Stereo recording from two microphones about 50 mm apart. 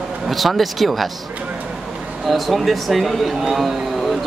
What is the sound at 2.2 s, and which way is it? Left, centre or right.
Speech, centre.